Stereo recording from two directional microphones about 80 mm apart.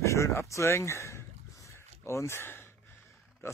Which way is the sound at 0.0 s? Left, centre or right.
Left.